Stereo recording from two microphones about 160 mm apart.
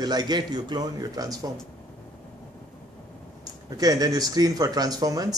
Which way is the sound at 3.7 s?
25° right (ahead or behind).